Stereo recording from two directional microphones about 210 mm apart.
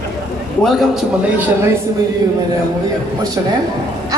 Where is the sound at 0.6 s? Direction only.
Centre (ahead or behind).